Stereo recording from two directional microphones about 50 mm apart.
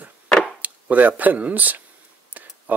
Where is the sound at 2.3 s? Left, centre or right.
Right.